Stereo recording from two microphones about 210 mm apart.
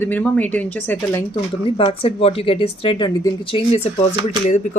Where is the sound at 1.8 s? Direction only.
25° left (ahead or behind).